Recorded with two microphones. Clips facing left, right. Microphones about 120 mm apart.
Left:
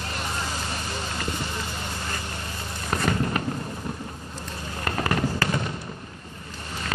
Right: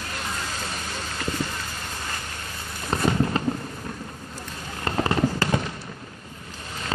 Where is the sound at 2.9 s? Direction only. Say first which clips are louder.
Right 2 dB; 25° right (ahead or behind).